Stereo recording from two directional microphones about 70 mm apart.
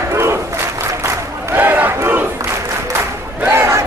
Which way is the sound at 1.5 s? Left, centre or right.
Right.